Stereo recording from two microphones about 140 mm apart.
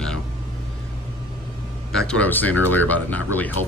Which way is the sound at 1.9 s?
10° left (ahead or behind).